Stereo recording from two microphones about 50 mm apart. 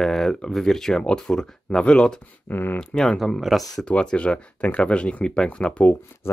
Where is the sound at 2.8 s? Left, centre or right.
Centre.